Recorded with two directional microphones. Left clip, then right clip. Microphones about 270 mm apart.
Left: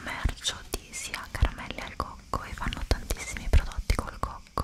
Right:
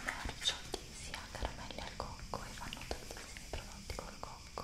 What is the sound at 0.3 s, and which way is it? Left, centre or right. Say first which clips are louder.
Whispering: left 5 dB; left.